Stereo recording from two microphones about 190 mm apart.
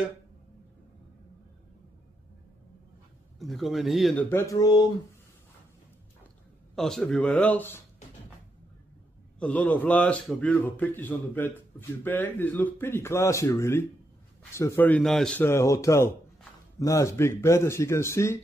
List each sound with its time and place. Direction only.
3.3 s speech: centre (ahead or behind); by 4.8 s 20° left (ahead or behind)
6.7 s speech: centre (ahead or behind)
9.4 s a man's voice: 5° left (ahead or behind)